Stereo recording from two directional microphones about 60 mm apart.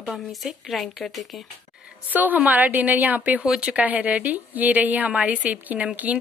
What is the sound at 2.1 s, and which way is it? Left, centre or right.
A woman's voice, right.